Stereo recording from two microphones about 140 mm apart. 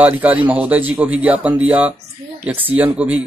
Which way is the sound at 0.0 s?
10° right (ahead or behind).